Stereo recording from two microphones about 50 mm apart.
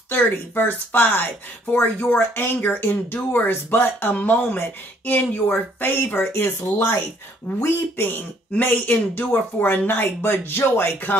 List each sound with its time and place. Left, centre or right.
0.1 s speech: left
1.7 s speech: left
2.3 s speech: left
4.1 s speech: left
8.5 s speech: left